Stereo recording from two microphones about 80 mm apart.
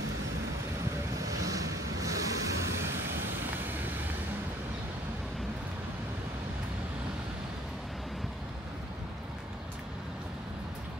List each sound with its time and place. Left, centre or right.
1.2 s waves: right